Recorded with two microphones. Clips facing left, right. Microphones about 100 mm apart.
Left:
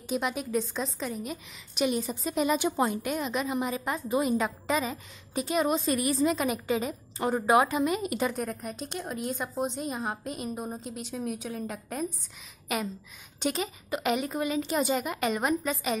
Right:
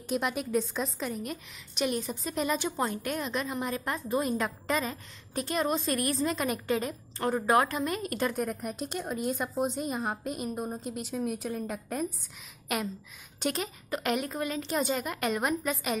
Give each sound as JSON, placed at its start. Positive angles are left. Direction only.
{"t": 0.1, "sound": "a woman's voice", "side_deg": 0}